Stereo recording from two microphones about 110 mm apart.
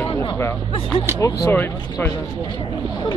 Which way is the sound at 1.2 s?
25° left (ahead or behind).